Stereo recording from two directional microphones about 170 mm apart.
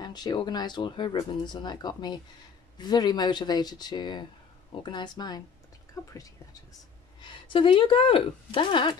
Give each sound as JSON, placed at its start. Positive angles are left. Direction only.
{"t": 0.0, "sound": "speech", "side_deg": 25}
{"t": 7.2, "sound": "speech", "side_deg": 30}